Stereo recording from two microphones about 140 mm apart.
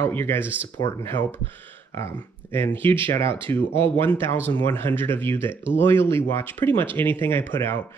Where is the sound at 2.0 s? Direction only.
20° left (ahead or behind).